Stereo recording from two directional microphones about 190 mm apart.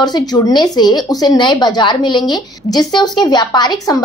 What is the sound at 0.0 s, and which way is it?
Speech, 20° left (ahead or behind).